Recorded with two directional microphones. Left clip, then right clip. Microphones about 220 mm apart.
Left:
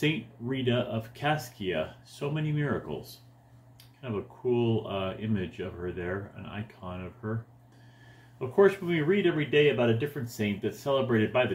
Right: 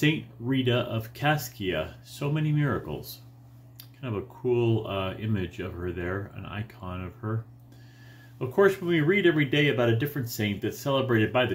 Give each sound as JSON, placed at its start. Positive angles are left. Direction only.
{"t": 0.0, "sound": "speech", "side_deg": -20}
{"t": 8.4, "sound": "speech", "side_deg": -20}